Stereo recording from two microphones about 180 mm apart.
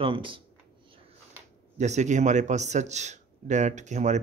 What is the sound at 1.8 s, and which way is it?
Speech, 40° right (ahead or behind).